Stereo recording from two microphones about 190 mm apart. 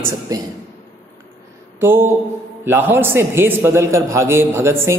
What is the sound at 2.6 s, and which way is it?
A man's voice, 10° right (ahead or behind).